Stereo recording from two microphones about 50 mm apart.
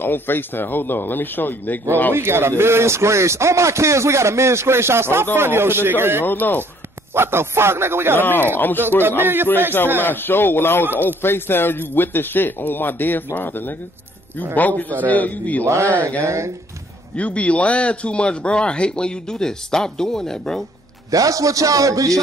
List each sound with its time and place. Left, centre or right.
0.0 s speech: left
2.1 s speech: right
6.2 s a man's voice: left
7.2 s speech: right
8.2 s a man's voice: left
9.2 s speech: right
10.0 s a man's voice: left
15.6 s a man's voice: right
17.1 s a man's voice: left; by 20.6 s centre
21.3 s a man's voice: right